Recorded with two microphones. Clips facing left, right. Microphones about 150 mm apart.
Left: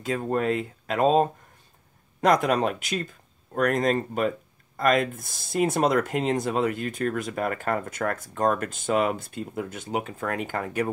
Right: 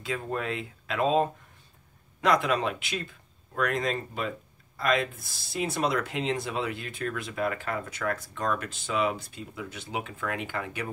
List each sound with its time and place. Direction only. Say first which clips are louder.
0.0 s speech: left 6 dB; 45° left (ahead or behind)